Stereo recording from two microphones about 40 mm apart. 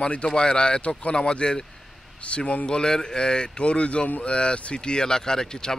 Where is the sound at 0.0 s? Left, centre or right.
Left.